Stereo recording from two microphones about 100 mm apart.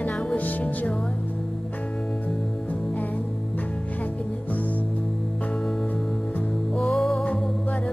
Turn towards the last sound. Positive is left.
turn(degrees=5)  # may be behind; listen again after turning